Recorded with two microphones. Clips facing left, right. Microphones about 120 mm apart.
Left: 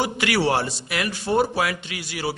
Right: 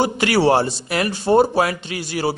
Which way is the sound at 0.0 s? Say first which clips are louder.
Right 5 dB; 35° right (ahead or behind).